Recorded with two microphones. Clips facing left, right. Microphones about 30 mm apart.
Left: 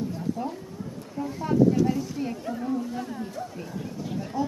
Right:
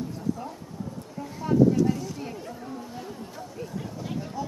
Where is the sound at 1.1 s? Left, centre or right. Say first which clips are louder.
Even; centre.